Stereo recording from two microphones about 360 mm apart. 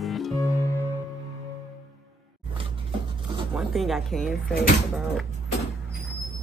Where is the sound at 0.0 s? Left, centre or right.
Centre.